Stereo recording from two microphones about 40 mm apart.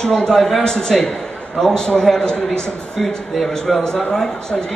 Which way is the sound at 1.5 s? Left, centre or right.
Centre.